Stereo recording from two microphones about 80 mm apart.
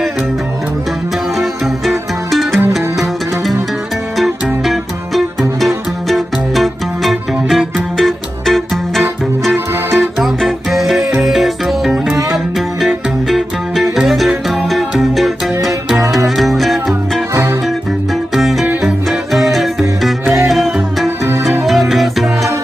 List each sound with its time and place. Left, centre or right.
1.4 s music: centre
9.8 s music: right
10.2 s music: centre
17.3 s music: right
18.3 s music: centre